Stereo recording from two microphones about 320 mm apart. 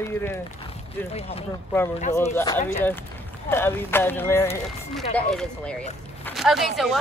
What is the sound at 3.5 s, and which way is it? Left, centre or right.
A woman's voice, centre.